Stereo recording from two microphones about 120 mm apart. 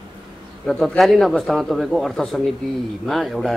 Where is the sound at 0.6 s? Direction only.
5° left (ahead or behind).